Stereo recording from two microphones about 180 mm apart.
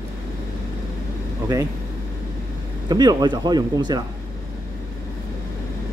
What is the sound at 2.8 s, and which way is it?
Speech, 25° right (ahead or behind).